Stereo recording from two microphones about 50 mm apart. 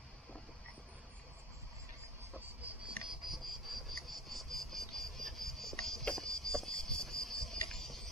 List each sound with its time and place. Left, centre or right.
2.6 s insect: right
3.1 s insect: centre